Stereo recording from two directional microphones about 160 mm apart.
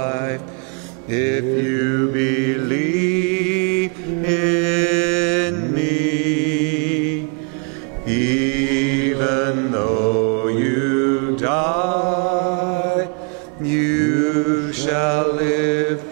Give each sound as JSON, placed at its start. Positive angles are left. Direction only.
{"t": 0.0, "sound": "mantra", "side_deg": 5}